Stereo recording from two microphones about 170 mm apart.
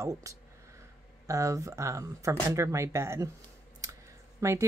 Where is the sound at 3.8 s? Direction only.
20° right (ahead or behind).